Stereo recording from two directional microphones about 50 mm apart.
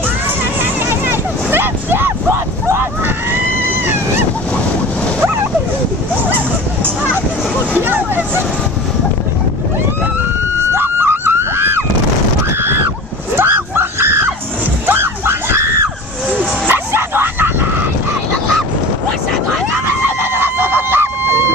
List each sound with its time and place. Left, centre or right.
0.6 s a sound: right
3.0 s a sound: right
6.3 s honk: right
7.8 s vehicle: right
10.8 s music: right
12.5 s screaming: right
14.9 s a sound: right
16.6 s bow-wow: right
20.2 s screaming: right